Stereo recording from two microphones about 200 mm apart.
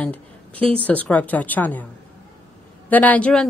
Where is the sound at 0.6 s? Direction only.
30° right (ahead or behind).